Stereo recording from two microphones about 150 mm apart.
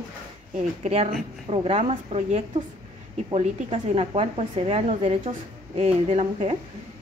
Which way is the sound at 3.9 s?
40° right (ahead or behind).